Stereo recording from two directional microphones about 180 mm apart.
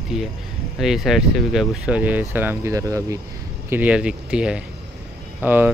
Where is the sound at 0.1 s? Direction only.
Centre (ahead or behind).